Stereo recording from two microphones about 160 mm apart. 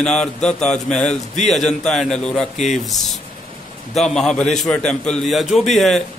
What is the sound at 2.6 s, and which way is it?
Speech, 45° left (ahead or behind).